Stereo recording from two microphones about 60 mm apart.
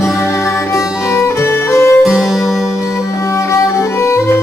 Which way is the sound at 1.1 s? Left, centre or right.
Left.